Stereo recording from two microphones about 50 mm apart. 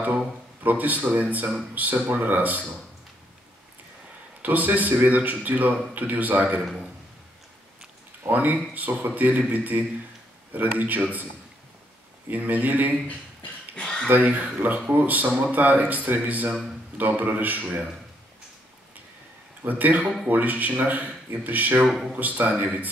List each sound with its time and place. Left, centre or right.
0.7 s speech: right
4.4 s speech: right
8.2 s speech: right
12.3 s speech: right
13.7 s a sound: centre
14.0 s speech: right
19.6 s speech: right
21.8 s a man's voice: centre
22.1 s speech: right